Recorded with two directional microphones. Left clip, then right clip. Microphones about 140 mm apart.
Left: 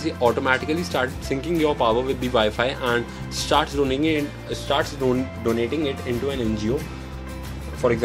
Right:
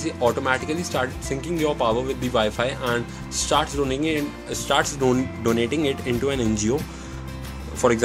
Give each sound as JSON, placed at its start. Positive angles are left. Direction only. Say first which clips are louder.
{"t": 0.0, "sound": "speech", "louder": "left 1 dB", "side_deg": 0}
{"t": 4.5, "sound": "speech", "louder": "right 2 dB", "side_deg": -15}
{"t": 5.0, "sound": "speech", "louder": "right 1 dB", "side_deg": -30}
{"t": 7.8, "sound": "speech", "louder": "right 1 dB", "side_deg": -35}